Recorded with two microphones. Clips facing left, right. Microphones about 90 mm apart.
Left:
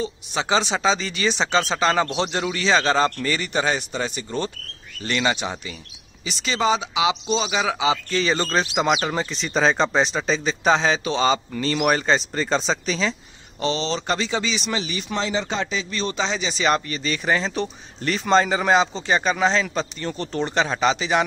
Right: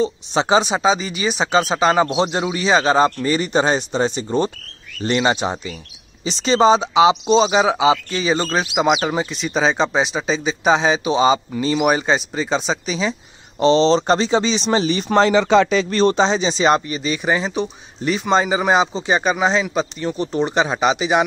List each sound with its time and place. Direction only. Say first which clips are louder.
0.0 s speech: right 7 dB; 25° right (ahead or behind); by 13.1 s 10° right (ahead or behind)
13.6 s speech: right 10 dB; 30° right (ahead or behind)
15.2 s speech: right 12 dB; 80° right; by 16.3 s 45° right (ahead or behind)
16.3 s speech: right 6 dB; 25° right (ahead or behind)